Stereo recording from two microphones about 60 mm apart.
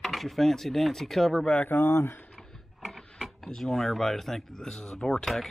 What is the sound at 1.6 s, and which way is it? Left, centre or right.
Speech, left.